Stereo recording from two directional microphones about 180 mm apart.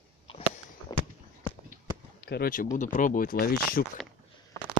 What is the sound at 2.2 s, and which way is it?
Speech, 60° left (ahead or behind).